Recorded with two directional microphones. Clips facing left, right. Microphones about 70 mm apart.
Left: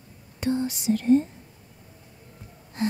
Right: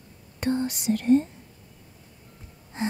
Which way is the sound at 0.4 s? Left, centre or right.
Right.